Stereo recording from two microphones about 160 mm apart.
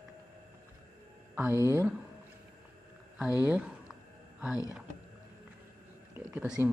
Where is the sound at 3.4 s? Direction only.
10° right (ahead or behind).